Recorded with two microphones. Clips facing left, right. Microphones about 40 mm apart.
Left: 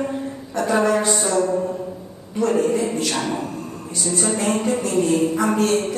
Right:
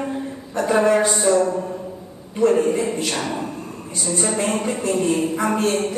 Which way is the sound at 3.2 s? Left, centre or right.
Centre.